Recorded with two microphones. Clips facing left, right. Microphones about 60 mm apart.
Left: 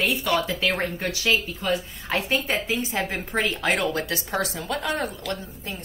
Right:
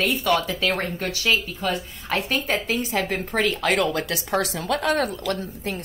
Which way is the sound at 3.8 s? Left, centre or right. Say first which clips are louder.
Right 3 dB; right.